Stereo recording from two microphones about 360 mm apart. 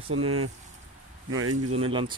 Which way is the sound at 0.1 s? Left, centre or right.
Right.